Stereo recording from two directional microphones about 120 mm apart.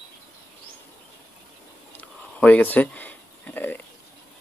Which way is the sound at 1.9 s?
15° left (ahead or behind).